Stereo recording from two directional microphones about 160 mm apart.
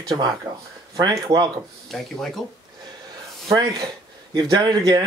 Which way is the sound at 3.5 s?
20° right (ahead or behind).